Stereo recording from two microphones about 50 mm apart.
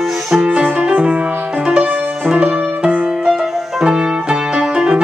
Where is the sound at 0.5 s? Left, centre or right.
Right.